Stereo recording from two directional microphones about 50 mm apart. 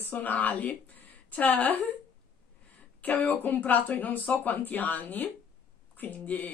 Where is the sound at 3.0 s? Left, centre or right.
Left.